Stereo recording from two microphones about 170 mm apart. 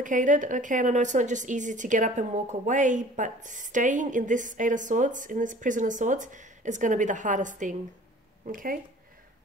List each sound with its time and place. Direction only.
0.0 s a woman's voice: 50° right (ahead or behind)